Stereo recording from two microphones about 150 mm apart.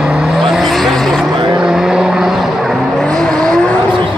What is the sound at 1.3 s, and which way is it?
Vehicle, 30° right (ahead or behind).